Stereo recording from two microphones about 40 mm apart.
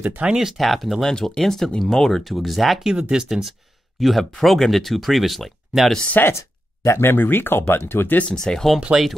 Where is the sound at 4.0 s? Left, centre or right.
Centre.